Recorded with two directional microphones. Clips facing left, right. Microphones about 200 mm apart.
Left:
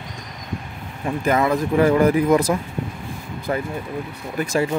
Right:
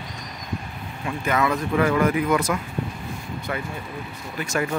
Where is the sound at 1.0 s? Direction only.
35° left (ahead or behind).